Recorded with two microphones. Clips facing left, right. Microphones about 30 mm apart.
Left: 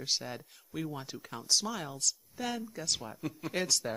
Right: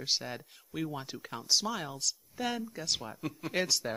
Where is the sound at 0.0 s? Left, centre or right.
Centre.